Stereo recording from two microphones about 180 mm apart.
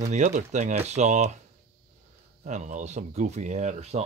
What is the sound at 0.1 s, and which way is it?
Speech, 40° right (ahead or behind).